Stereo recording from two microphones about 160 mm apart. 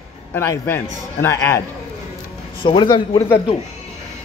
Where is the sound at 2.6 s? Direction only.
30° left (ahead or behind).